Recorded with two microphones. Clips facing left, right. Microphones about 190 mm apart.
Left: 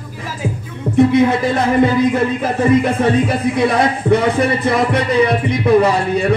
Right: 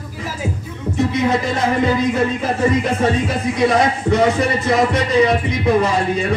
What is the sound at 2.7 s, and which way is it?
A man's voice, 55° left (ahead or behind).